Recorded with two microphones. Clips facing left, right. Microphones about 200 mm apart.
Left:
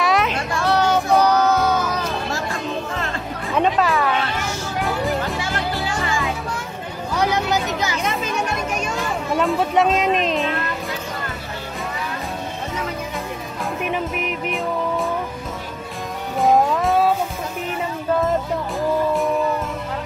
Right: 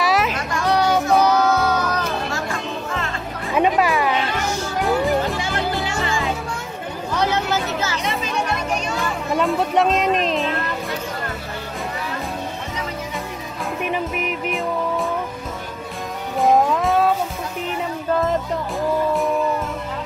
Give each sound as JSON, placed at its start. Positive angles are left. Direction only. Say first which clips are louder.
{"t": 0.0, "sound": "music", "louder": "even", "side_deg": 0}
{"t": 3.5, "sound": "music", "louder": "right 1 dB", "side_deg": -10}
{"t": 4.8, "sound": "children playing", "louder": "right 4 dB", "side_deg": 0}
{"t": 7.2, "sound": "a sound", "louder": "left 1 dB", "side_deg": 15}
{"t": 9.3, "sound": "speech", "louder": "even", "side_deg": 0}
{"t": 13.8, "sound": "music", "louder": "right 1 dB", "side_deg": 0}
{"t": 16.3, "sound": "music", "louder": "even", "side_deg": 0}
{"t": 18.8, "sound": "music", "louder": "even", "side_deg": 0}